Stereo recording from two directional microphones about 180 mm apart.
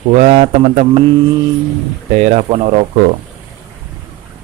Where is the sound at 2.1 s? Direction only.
40° right (ahead or behind).